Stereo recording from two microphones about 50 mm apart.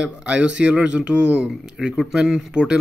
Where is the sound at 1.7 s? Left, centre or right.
Centre.